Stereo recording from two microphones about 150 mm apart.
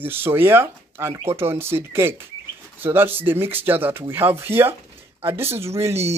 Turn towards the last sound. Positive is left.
turn(degrees=-15)  # may be behind; listen again after turning